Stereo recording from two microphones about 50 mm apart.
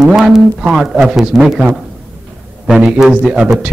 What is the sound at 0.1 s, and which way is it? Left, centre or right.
Speech, centre.